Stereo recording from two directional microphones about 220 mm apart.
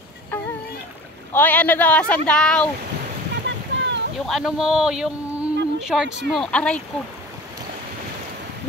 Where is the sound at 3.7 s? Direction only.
55° right (ahead or behind).